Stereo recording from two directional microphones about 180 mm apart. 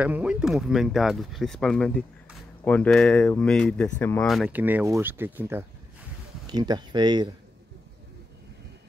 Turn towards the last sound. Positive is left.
turn(degrees=-25)  # may be behind; listen again after turning